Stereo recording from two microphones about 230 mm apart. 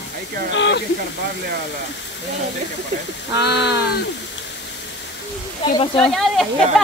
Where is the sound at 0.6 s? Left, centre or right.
Left.